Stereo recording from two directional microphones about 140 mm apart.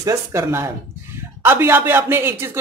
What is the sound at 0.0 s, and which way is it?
Speech, 20° right (ahead or behind).